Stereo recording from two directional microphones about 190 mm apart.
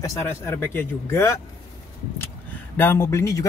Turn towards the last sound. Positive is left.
turn(degrees=15)  # may be behind; listen again after turning